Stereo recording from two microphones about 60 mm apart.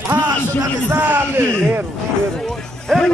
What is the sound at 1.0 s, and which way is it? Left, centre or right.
Speech, right.